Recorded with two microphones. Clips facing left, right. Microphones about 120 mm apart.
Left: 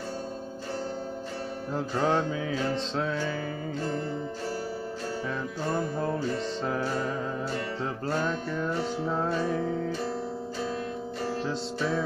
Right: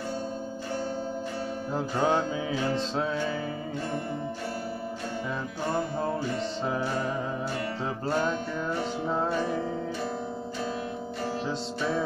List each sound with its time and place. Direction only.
2.0 s music: 5° right (ahead or behind)
6.6 s music: 5° right (ahead or behind)
8.1 s music: 20° right (ahead or behind)